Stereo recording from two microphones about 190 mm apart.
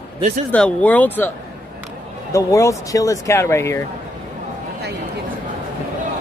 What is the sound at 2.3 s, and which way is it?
Speech, 15° left (ahead or behind).